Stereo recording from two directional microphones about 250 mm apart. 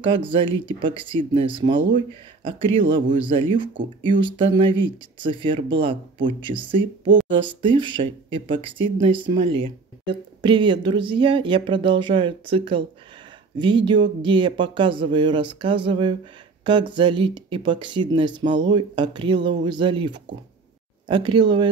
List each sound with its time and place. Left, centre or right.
0.0 s speech: right